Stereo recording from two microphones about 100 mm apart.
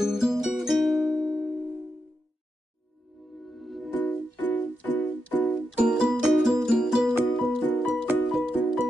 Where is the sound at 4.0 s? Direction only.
15° left (ahead or behind).